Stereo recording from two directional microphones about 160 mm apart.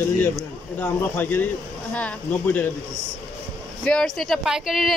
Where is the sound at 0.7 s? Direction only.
10° left (ahead or behind).